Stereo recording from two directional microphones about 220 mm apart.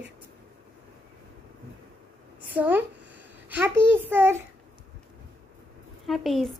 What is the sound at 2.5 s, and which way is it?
A child's voice, 10° right (ahead or behind).